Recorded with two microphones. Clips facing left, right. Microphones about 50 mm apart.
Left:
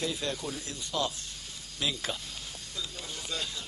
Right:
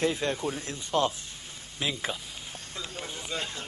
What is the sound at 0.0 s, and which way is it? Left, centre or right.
Speech, right.